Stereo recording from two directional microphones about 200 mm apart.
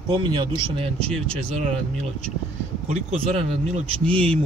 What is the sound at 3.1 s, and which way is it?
Speech, 35° right (ahead or behind).